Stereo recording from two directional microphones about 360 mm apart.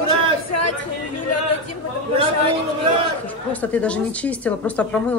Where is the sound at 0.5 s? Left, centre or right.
Left.